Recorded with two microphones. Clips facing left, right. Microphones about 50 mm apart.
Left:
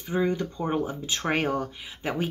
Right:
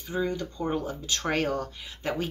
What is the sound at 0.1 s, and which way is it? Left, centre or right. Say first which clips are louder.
Speech: left 4 dB; left.